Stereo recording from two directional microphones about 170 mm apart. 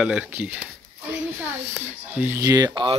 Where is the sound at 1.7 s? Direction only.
10° right (ahead or behind); by 3.0 s 30° right (ahead or behind).